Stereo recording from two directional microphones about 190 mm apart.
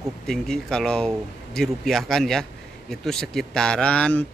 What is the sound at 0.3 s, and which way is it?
A man's voice, 5° left (ahead or behind).